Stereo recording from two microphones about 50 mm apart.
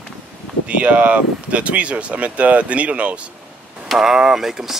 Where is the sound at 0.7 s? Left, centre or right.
Right.